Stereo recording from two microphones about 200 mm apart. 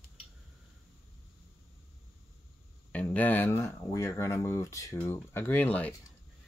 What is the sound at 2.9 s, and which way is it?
Speech, 10° left (ahead or behind).